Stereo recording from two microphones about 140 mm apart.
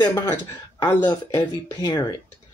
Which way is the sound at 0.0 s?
30° left (ahead or behind).